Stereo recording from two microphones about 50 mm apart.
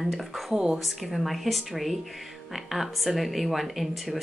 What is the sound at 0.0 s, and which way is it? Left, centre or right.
Speech, centre.